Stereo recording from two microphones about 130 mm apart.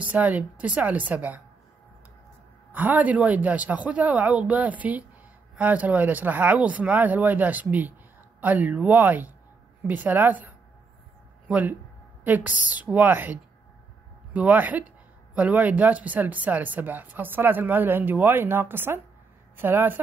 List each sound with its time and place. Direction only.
0.0 s speech: 10° right (ahead or behind)
2.7 s speech: 15° right (ahead or behind)